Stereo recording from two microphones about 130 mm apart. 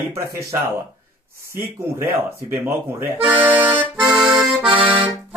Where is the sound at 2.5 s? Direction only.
20° right (ahead or behind).